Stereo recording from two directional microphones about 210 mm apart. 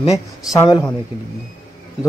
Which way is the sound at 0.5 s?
20° left (ahead or behind).